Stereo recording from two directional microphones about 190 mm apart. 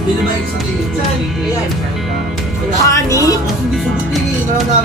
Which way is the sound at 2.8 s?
15° left (ahead or behind).